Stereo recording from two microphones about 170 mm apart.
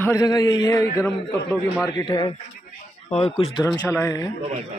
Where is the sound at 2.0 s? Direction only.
25° left (ahead or behind).